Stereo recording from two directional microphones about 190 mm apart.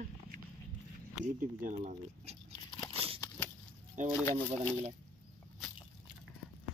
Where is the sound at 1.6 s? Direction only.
40° right (ahead or behind).